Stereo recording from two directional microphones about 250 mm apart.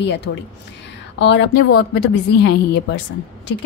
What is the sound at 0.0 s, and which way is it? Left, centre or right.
Speech, left.